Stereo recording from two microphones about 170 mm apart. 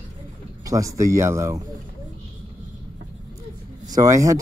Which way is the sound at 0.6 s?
20° right (ahead or behind).